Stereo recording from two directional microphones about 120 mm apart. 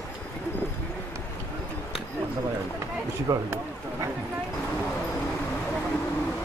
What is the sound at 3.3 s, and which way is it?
Speech, 25° right (ahead or behind).